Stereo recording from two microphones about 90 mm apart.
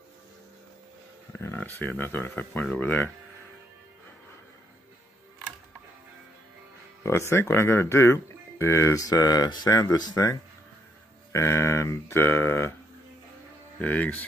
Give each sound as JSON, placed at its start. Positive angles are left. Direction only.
{"t": 1.6, "sound": "speech", "side_deg": 20}
{"t": 7.0, "sound": "speech", "side_deg": 30}
{"t": 11.3, "sound": "speech", "side_deg": 35}
{"t": 13.7, "sound": "speech", "side_deg": 20}